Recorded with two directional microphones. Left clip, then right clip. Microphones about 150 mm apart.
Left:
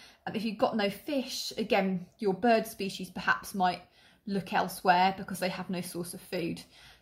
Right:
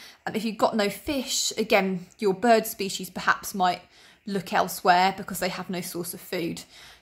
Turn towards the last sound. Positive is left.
turn(degrees=-25)  # may be behind; listen again after turning